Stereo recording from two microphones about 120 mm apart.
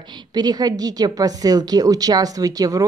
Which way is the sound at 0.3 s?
35° right (ahead or behind).